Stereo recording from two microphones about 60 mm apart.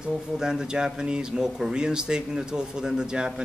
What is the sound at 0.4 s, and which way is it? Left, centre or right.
Speech, centre.